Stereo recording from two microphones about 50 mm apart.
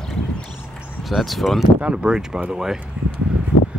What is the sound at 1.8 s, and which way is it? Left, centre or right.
Speech, centre.